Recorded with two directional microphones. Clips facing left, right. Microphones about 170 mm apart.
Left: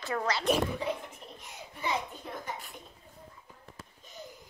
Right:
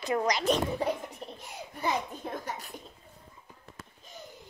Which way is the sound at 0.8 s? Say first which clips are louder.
Right 3 dB; 45° right (ahead or behind).